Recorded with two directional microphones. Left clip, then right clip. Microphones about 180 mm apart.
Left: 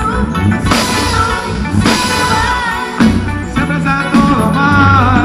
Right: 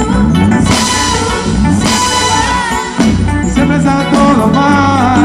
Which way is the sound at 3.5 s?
35° right (ahead or behind).